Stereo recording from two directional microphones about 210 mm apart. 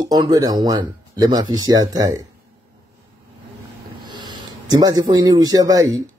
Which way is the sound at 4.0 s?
20° right (ahead or behind).